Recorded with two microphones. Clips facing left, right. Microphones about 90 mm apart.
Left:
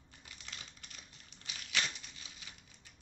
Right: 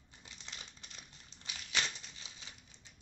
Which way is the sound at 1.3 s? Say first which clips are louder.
Even; 30° right (ahead or behind).